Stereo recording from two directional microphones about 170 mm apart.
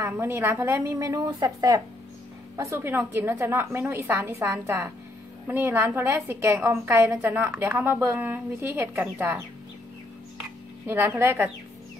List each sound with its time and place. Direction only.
0.0 s a woman's voice: 15° right (ahead or behind)
10.9 s a woman's voice: 15° right (ahead or behind)